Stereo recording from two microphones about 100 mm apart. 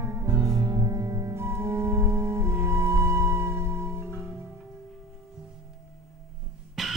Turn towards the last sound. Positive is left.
turn(degrees=0)  # may be behind; listen again after turning